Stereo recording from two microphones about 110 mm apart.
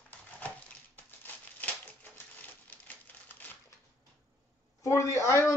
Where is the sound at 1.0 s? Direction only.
15° left (ahead or behind).